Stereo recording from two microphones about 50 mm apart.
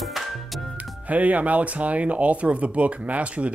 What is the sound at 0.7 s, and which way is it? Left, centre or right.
Speech, right.